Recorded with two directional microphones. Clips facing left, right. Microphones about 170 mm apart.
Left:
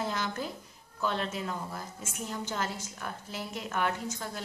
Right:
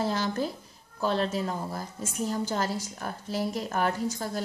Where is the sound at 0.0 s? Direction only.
35° right (ahead or behind).